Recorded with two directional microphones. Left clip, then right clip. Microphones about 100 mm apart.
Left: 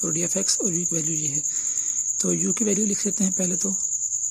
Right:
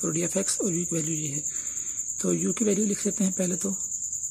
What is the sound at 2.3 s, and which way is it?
Speech, 30° left (ahead or behind).